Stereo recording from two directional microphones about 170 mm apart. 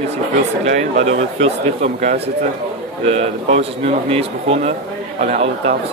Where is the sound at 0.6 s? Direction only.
40° right (ahead or behind).